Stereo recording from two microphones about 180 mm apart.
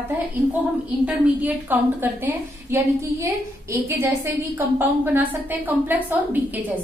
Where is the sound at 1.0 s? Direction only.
10° right (ahead or behind).